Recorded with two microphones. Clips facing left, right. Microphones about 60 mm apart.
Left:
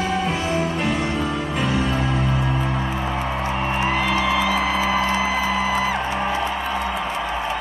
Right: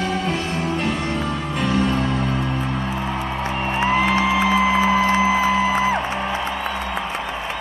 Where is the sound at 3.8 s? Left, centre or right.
Right.